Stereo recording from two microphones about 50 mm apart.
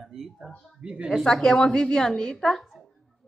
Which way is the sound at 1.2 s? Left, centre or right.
Centre.